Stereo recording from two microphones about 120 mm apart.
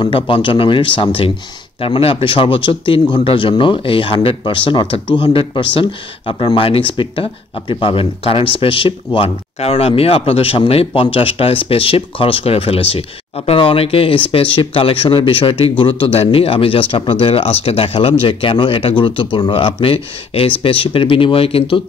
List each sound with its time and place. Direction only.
0.0 s speech: 45° left (ahead or behind)